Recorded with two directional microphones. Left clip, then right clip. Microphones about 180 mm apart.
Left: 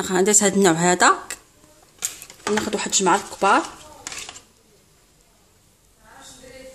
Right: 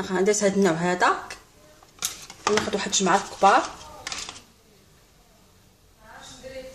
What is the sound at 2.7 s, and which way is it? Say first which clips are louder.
Speech: left 3 dB; 50° left (ahead or behind).